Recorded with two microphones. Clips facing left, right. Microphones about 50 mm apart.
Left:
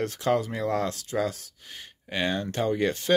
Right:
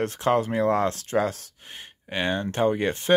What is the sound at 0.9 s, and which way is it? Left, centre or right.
Speech, right.